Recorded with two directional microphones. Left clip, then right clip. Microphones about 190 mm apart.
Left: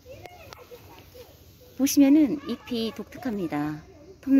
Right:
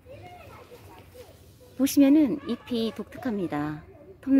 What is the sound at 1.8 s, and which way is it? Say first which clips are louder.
Speech: left 1 dB; centre (ahead or behind).